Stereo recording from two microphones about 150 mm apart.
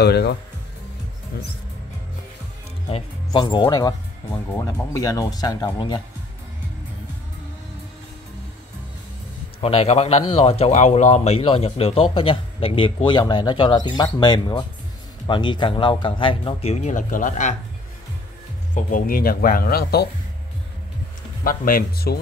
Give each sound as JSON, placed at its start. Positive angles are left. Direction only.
{"t": 0.0, "sound": "speech", "side_deg": 90}
{"t": 2.9, "sound": "speech", "side_deg": 30}
{"t": 9.6, "sound": "a man's voice", "side_deg": 40}
{"t": 18.8, "sound": "speech", "side_deg": 65}
{"t": 21.5, "sound": "speech", "side_deg": 70}